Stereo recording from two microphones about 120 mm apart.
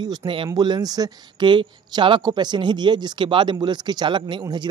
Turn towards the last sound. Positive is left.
turn(degrees=-40)  # may be behind; listen again after turning